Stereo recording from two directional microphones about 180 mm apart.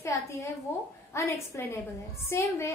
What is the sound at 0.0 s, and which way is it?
A woman's voice, 15° left (ahead or behind).